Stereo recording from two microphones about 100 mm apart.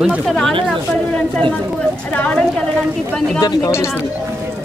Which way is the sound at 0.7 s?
5° left (ahead or behind).